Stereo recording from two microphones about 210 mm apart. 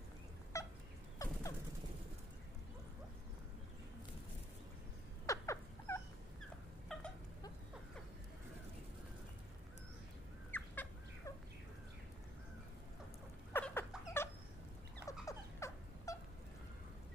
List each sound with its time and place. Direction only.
0.5 s fowl: 15° left (ahead or behind)
1.2 s a sound: 15° left (ahead or behind)
5.2 s rodents: 15° left (ahead or behind)
6.9 s cat: centre (ahead or behind)
10.5 s dog: 10° left (ahead or behind)
13.5 s dog: 10° left (ahead or behind)
15.0 s a sound: 15° left (ahead or behind)